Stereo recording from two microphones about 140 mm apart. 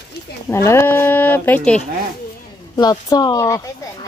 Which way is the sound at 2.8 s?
30° left (ahead or behind).